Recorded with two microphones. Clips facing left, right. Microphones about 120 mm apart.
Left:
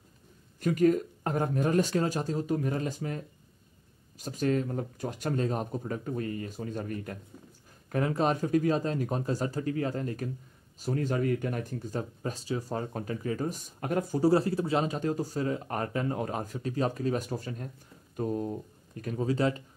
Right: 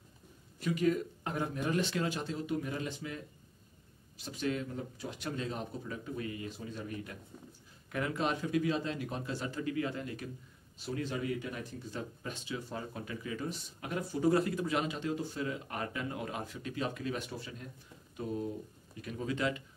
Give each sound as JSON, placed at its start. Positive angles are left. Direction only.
{"t": 0.6, "sound": "speech", "side_deg": 45}